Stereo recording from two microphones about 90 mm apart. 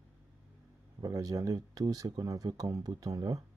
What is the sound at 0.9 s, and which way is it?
Speech, 40° right (ahead or behind).